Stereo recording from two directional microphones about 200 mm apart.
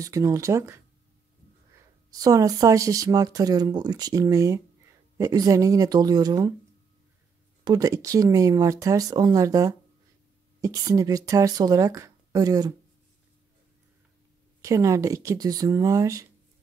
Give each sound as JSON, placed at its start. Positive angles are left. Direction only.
{"t": 0.0, "sound": "speech", "side_deg": -15}
{"t": 2.0, "sound": "speech", "side_deg": -20}
{"t": 7.6, "sound": "speech", "side_deg": -20}
{"t": 14.6, "sound": "speech", "side_deg": -15}